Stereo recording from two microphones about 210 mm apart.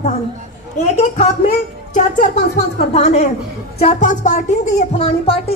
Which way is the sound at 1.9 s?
35° left (ahead or behind).